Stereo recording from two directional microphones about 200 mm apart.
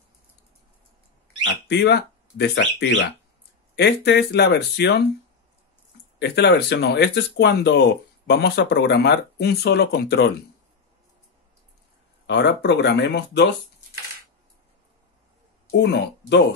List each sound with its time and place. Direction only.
1.4 s speech: 55° left (ahead or behind)
6.1 s speech: 60° left (ahead or behind)
12.3 s speech: 60° left (ahead or behind)
15.7 s speech: 60° left (ahead or behind)